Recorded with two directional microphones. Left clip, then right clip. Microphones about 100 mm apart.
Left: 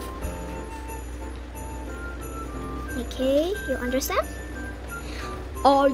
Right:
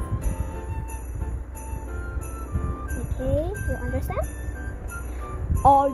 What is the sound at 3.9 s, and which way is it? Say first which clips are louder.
Music: left 6 dB; 40° left (ahead or behind).